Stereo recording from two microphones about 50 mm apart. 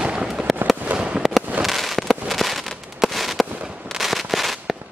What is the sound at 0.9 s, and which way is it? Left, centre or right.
Fireworks, right.